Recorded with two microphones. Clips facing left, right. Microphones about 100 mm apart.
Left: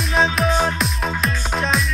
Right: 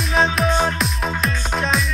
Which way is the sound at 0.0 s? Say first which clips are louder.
Even; centre (ahead or behind).